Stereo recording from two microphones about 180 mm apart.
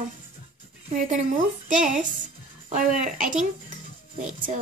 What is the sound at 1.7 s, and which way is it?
A woman's voice, 45° right (ahead or behind).